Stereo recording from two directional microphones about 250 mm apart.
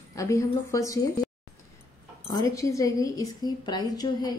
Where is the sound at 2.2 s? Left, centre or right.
Centre.